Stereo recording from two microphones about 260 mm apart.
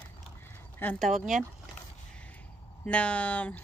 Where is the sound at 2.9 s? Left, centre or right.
Centre.